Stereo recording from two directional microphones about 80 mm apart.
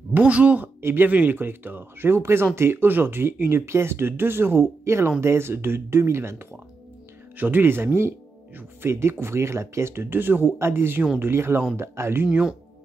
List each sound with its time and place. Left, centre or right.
0.1 s speech: centre
0.7 s speech: right
12.3 s speech: centre